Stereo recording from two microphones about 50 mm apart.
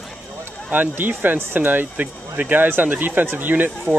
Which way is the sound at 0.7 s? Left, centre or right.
Right.